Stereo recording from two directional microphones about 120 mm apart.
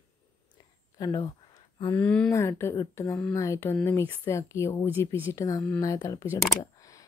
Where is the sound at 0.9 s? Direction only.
30° left (ahead or behind).